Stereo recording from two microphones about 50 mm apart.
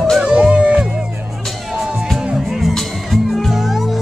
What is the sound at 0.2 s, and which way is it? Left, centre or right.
Music, right.